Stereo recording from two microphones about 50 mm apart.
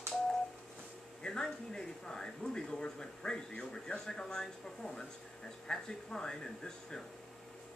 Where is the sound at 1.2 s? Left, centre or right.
Centre.